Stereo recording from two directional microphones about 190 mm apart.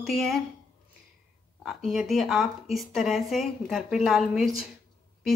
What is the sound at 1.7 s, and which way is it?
Speech, centre (ahead or behind).